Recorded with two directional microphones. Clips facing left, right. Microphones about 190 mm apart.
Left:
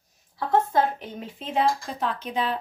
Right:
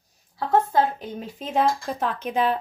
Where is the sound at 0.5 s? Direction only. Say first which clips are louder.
Right 1 dB; 40° right (ahead or behind).